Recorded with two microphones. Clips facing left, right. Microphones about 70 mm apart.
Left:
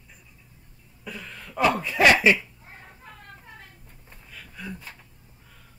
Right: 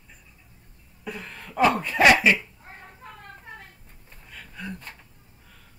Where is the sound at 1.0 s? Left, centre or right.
Right.